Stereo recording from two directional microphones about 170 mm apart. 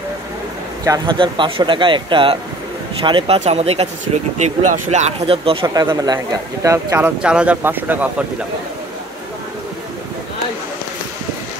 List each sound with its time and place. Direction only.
0.8 s a man's voice: 25° right (ahead or behind)
4.9 s a man's voice: 35° right (ahead or behind); by 7.1 s 20° right (ahead or behind)
7.2 s speech: 5° right (ahead or behind)